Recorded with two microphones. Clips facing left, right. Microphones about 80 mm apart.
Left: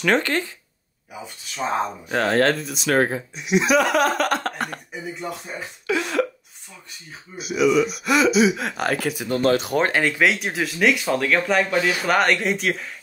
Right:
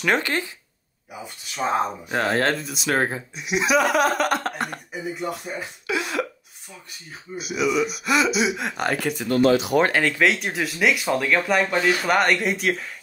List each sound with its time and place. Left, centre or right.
0.0 s speech: centre
7.3 s speech: centre
9.4 s speech: left
9.8 s speech: left
10.1 s speech: centre